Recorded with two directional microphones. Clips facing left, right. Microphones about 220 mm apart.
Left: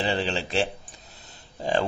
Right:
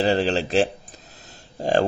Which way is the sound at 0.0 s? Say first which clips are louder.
Right 6 dB; 40° right (ahead or behind).